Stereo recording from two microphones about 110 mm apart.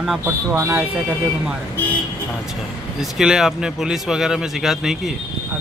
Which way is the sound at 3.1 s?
5° right (ahead or behind).